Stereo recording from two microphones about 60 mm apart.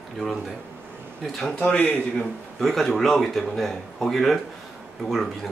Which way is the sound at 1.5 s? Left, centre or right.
Left.